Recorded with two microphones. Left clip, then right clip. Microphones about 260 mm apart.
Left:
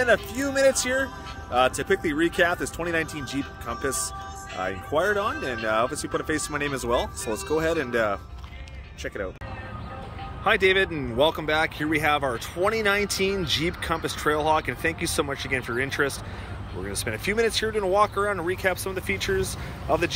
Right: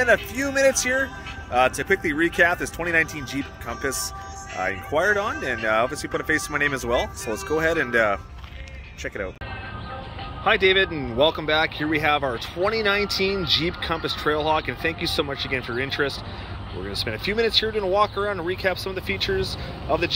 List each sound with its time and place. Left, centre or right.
0.0 s speech: centre
7.2 s speech: centre
7.5 s speech: centre
10.4 s speech: centre